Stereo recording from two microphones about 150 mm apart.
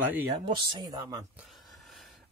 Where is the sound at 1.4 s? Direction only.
Centre (ahead or behind).